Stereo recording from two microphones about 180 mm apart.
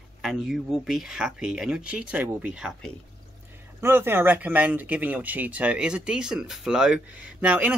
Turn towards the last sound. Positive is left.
turn(degrees=-10)  # may be behind; listen again after turning